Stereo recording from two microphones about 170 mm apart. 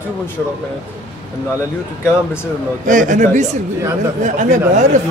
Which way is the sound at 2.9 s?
50° right (ahead or behind).